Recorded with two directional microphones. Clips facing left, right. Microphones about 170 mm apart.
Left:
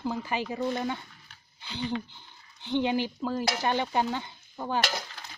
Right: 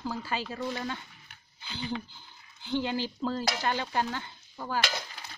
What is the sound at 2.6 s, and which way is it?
Stir, 20° left (ahead or behind).